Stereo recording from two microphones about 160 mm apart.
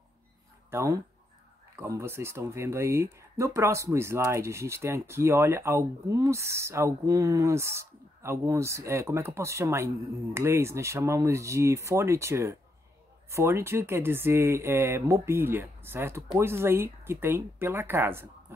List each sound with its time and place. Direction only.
0.7 s speech: 20° right (ahead or behind)